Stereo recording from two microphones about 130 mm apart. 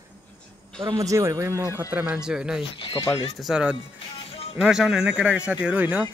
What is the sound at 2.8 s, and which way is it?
Speech, 40° left (ahead or behind).